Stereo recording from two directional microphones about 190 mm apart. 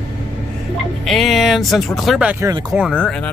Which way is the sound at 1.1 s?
Centre (ahead or behind).